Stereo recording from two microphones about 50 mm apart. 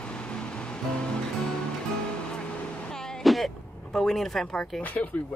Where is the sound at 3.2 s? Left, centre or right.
Centre.